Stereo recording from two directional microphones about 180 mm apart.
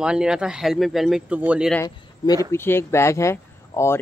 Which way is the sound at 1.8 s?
20° left (ahead or behind).